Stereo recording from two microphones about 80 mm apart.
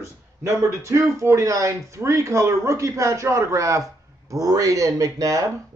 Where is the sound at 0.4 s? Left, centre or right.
Right.